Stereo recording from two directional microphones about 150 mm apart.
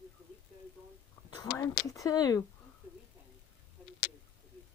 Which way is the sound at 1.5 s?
20° left (ahead or behind).